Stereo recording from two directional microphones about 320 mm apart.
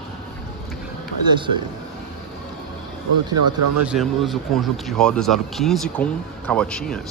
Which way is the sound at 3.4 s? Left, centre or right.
Right.